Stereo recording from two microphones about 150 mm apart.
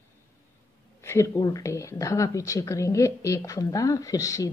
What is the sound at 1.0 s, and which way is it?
A woman's voice, 20° left (ahead or behind).